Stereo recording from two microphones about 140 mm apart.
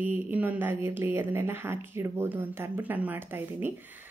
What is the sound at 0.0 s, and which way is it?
Speech, 10° right (ahead or behind).